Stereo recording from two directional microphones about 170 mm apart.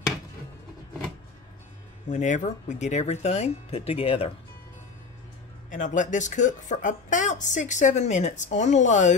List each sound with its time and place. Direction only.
2.0 s speech: 45° left (ahead or behind)
5.7 s speech: 50° left (ahead or behind)